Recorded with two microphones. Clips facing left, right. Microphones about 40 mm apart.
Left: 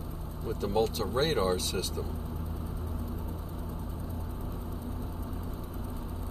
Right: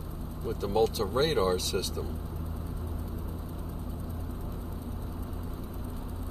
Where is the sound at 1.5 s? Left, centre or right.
Left.